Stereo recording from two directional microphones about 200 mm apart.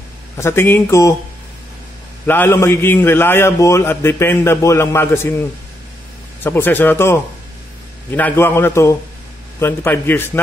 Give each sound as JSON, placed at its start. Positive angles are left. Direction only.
{"t": 0.4, "sound": "a man's voice", "side_deg": 10}
{"t": 2.2, "sound": "a man's voice", "side_deg": 10}